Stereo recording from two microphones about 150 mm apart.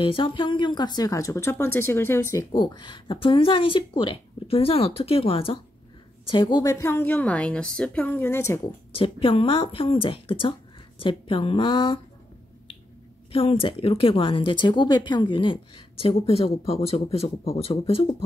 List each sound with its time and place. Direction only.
0.0 s speech: 35° left (ahead or behind)
6.6 s a woman's voice: 20° left (ahead or behind)
8.9 s speech: 35° left (ahead or behind)
13.3 s speech: 40° left (ahead or behind)